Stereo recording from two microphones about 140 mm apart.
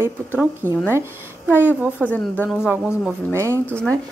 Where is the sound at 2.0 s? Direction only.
10° left (ahead or behind).